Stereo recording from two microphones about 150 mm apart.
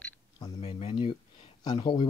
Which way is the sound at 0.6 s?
45° left (ahead or behind).